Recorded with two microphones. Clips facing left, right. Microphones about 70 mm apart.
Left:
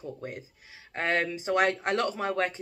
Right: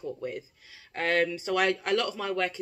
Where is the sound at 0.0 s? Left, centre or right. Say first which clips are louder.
Right 3 dB; left.